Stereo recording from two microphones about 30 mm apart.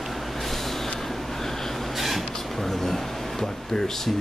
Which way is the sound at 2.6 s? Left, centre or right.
Centre.